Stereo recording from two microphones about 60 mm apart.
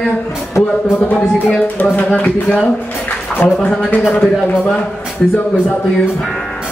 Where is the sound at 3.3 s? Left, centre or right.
Centre.